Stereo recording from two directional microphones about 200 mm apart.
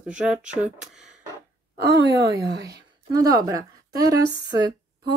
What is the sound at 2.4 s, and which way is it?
Speech, 55° right (ahead or behind).